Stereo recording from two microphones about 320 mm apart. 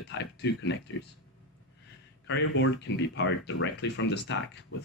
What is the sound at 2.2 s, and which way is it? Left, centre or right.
Speech, left.